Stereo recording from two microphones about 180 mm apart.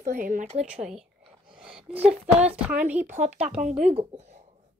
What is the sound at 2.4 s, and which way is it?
A child's voice, 5° right (ahead or behind).